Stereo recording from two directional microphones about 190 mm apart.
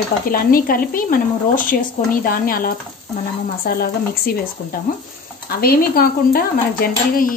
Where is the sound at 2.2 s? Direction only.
50° left (ahead or behind).